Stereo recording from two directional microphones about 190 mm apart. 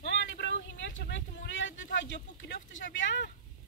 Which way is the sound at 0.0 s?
70° left (ahead or behind).